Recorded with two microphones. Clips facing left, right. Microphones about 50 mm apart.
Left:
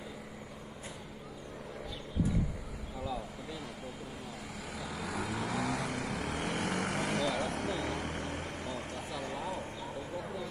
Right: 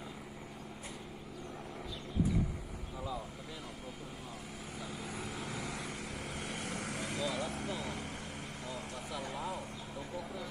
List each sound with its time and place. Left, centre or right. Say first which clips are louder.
4.8 s vehicle: left 6 dB; left
9.1 s vehicle: left 1 dB; left